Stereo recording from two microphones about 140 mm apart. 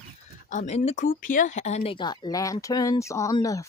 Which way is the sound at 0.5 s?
60° left (ahead or behind).